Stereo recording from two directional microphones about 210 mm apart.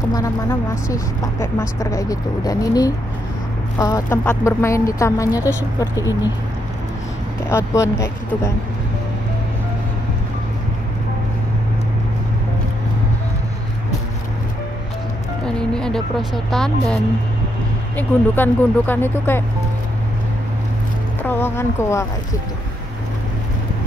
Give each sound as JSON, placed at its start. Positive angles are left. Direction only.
{"t": 0.1, "sound": "speech", "side_deg": 15}
{"t": 7.4, "sound": "speech", "side_deg": 15}
{"t": 15.4, "sound": "speech", "side_deg": 5}
{"t": 21.2, "sound": "speech", "side_deg": 10}